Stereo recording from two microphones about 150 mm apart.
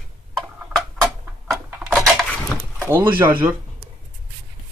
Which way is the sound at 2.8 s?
15° right (ahead or behind).